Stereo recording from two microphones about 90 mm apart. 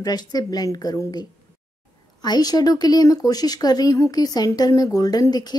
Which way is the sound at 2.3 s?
45° left (ahead or behind).